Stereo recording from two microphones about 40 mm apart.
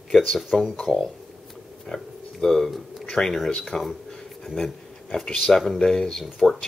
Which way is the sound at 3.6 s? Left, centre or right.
Centre.